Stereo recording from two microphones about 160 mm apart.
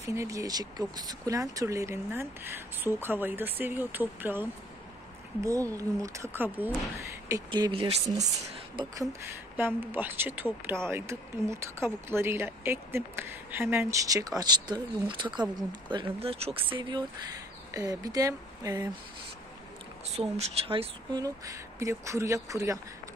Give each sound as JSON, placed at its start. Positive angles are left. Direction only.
{"t": 0.0, "sound": "speech", "side_deg": -20}
{"t": 17.6, "sound": "speech", "side_deg": -20}
{"t": 20.2, "sound": "speech", "side_deg": -40}
{"t": 21.2, "sound": "speech", "side_deg": -20}